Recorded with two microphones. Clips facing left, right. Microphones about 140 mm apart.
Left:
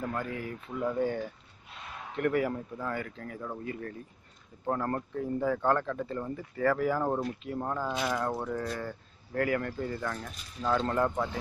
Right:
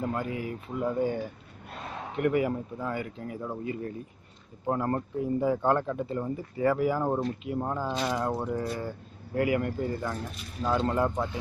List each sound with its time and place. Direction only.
0.0 s speech: 20° right (ahead or behind)